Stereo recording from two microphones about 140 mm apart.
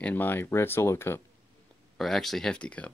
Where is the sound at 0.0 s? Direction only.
15° left (ahead or behind).